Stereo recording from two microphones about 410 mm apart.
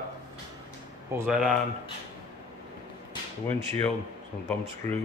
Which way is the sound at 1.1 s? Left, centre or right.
Centre.